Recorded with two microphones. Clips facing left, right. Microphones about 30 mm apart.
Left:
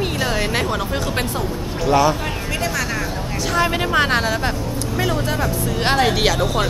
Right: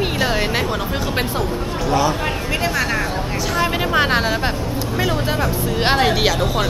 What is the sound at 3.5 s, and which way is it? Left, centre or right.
Speech, centre.